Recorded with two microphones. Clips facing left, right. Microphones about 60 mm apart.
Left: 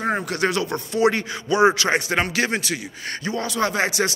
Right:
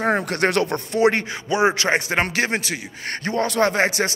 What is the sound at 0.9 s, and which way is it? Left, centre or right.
A man's voice, right.